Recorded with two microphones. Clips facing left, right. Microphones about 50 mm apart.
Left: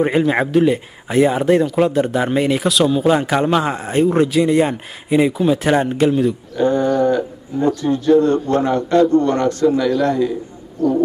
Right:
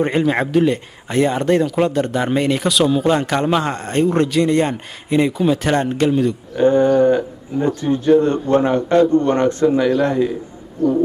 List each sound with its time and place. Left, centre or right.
0.0 s speech: centre
6.5 s a man's voice: right